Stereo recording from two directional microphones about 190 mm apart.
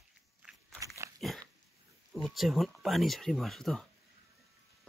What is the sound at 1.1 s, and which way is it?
Dog, centre (ahead or behind).